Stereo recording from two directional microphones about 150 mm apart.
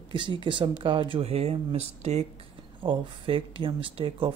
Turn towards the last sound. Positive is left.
turn(degrees=-35)  # may be behind; listen again after turning